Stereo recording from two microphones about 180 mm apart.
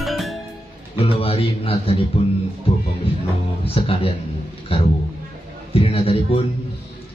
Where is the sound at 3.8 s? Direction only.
30° left (ahead or behind).